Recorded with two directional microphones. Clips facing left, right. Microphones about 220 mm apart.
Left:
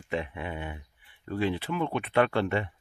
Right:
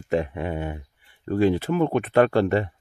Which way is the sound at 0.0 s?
45° right (ahead or behind).